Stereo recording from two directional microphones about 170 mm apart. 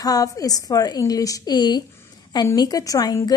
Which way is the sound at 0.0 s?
20° left (ahead or behind).